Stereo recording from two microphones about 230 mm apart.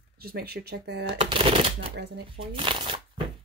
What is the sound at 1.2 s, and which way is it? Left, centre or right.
Speech, right.